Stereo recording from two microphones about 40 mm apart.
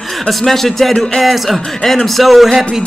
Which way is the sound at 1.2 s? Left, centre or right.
Centre.